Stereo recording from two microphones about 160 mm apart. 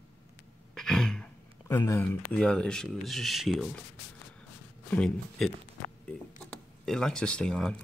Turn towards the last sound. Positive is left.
turn(degrees=5)  # may be behind; listen again after turning